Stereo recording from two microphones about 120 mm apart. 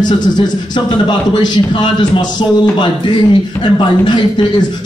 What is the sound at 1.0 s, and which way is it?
A man's voice, 40° left (ahead or behind).